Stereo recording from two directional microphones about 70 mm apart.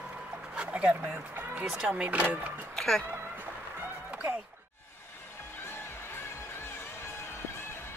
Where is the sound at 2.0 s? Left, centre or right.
Right.